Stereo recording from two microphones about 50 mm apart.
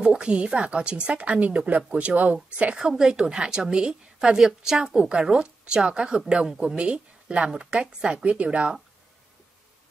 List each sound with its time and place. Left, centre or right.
0.0 s speech: centre
2.8 s a woman's voice: centre